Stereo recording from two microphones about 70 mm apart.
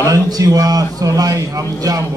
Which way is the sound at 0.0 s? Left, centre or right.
Right.